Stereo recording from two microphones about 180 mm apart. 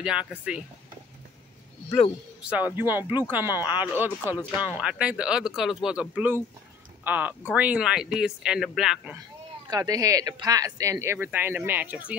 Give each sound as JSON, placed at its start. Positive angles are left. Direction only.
{"t": 0.0, "sound": "speech", "side_deg": -5}
{"t": 2.4, "sound": "speech", "side_deg": -10}
{"t": 9.7, "sound": "speech", "side_deg": -20}